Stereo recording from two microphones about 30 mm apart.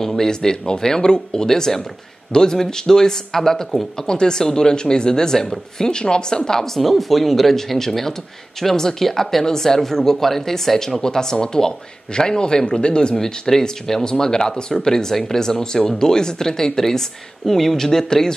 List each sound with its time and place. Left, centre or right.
0.0 s speech: centre
6.8 s speech: centre
11.0 s speech: left
13.2 s speech: centre